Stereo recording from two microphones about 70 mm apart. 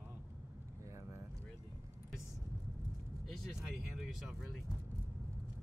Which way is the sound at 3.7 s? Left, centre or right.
Centre.